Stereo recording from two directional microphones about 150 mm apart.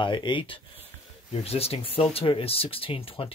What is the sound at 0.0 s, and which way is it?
Speech, 30° left (ahead or behind).